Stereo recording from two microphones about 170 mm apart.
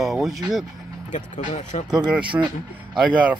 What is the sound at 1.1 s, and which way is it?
Speech, 45° left (ahead or behind).